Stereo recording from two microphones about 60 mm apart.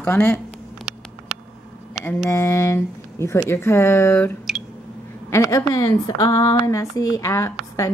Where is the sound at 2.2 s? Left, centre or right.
Left.